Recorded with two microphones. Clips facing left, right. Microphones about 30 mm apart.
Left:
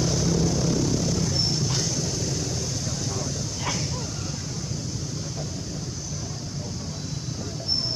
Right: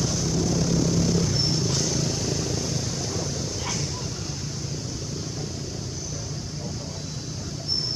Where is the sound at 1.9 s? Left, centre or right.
Right.